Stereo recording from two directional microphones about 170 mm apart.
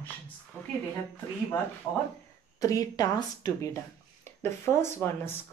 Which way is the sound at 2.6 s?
20° left (ahead or behind).